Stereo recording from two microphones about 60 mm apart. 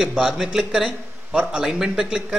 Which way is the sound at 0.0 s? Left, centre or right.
Centre.